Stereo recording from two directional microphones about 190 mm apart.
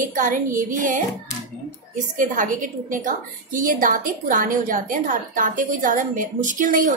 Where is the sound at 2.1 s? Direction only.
45° right (ahead or behind).